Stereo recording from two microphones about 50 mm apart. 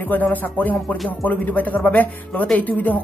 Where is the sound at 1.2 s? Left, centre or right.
Left.